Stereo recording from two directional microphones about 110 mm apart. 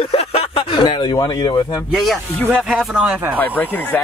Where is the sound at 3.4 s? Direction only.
15° left (ahead or behind).